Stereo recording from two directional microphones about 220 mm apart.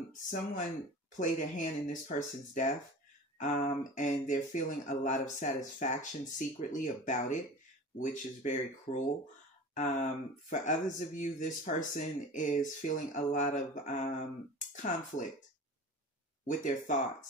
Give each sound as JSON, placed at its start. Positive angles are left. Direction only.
{"t": 0.1, "sound": "speech", "side_deg": 35}
{"t": 16.4, "sound": "speech", "side_deg": 35}